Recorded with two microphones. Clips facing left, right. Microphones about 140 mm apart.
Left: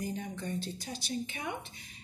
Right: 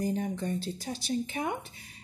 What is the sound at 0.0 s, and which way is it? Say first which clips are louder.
Speech: right 7 dB; 40° right (ahead or behind).